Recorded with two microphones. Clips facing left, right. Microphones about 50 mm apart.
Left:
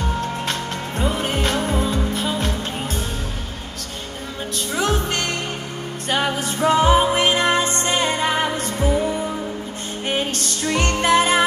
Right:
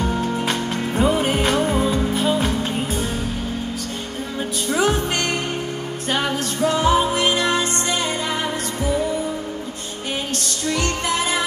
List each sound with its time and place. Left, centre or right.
0.1 s music: centre
4.6 s music: centre
6.6 s music: left
10.7 s music: left